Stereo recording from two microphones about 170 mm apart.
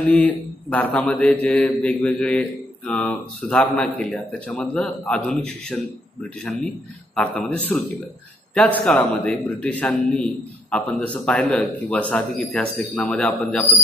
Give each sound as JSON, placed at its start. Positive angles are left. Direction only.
{"t": 0.0, "sound": "mantra", "side_deg": 5}
{"t": 2.9, "sound": "a man's voice", "side_deg": 5}
{"t": 7.2, "sound": "mantra", "side_deg": 5}
{"t": 8.5, "sound": "a man's voice", "side_deg": 5}